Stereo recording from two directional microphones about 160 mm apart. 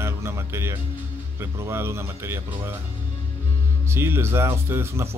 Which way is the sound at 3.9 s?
15° right (ahead or behind).